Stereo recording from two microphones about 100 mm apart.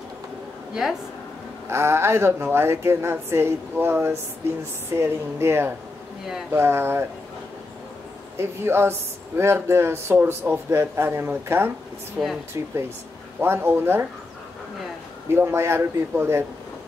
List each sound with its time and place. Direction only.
0.8 s speech: centre (ahead or behind)
1.7 s a woman's voice: 25° right (ahead or behind)
8.4 s a woman's voice: 25° right (ahead or behind)
12.2 s speech: 10° right (ahead or behind)
12.6 s a woman's voice: 30° right (ahead or behind)
15.3 s a woman's voice: 25° right (ahead or behind)